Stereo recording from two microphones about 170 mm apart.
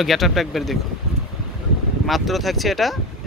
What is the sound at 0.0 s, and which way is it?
Speech, centre (ahead or behind).